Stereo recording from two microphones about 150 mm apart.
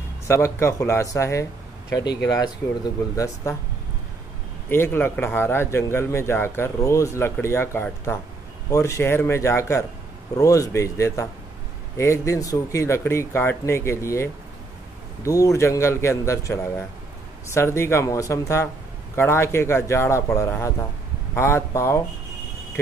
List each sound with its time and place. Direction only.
0.3 s speech: 15° left (ahead or behind)
4.6 s a man's voice: 15° left (ahead or behind)